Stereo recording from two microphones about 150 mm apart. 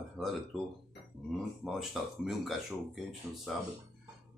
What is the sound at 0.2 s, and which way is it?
Speech, centre (ahead or behind).